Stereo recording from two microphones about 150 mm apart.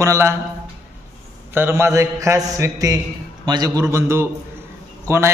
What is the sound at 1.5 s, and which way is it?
A man's voice, 15° right (ahead or behind).